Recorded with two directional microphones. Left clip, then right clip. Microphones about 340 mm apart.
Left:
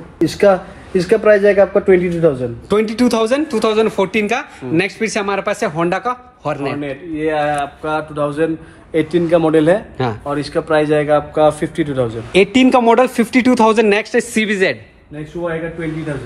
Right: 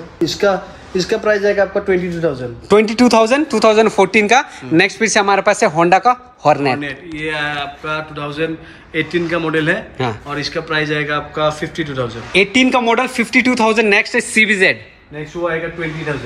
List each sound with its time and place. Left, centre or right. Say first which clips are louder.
0.2 s a man's voice: left 3 dB; centre
2.7 s speech: right 5 dB; centre
6.8 s a man's voice: left 3 dB; centre
12.3 s speech: even; centre